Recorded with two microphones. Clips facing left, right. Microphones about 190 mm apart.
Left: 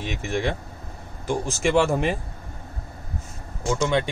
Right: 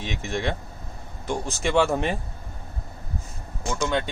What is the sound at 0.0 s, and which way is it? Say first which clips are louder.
Speech: left 2 dB; 5° left (ahead or behind).